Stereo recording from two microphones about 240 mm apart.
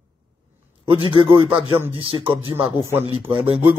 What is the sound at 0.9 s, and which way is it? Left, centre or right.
A man's voice, right.